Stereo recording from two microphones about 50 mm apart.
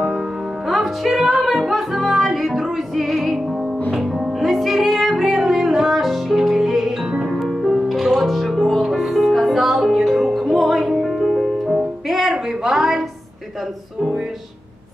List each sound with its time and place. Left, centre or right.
0.7 s music: centre